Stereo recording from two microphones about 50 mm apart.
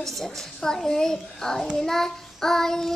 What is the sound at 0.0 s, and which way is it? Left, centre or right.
Child singing, centre.